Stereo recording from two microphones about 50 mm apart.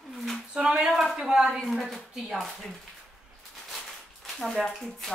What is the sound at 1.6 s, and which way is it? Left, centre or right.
Speech, centre.